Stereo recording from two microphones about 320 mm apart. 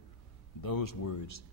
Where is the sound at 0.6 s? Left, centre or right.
Left.